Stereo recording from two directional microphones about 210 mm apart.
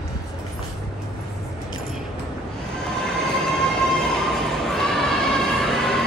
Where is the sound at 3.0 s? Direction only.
Centre (ahead or behind).